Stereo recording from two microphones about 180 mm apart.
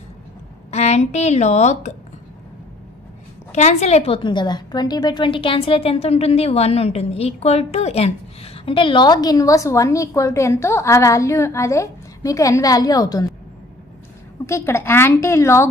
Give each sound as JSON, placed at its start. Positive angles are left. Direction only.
{"t": 0.7, "sound": "a woman's voice", "side_deg": 40}
{"t": 3.5, "sound": "a woman's voice", "side_deg": 40}
{"t": 14.4, "sound": "a woman's voice", "side_deg": 15}